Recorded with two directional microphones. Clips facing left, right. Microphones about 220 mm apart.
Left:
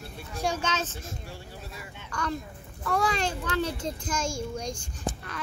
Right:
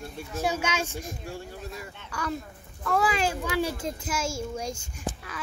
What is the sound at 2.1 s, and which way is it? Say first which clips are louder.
A child's voice: even; 5° right (ahead or behind).